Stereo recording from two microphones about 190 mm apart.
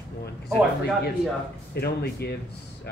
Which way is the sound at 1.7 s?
60° left (ahead or behind).